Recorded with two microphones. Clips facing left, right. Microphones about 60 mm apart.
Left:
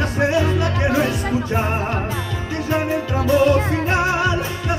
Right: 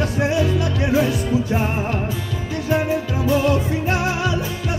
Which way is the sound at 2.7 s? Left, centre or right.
Left.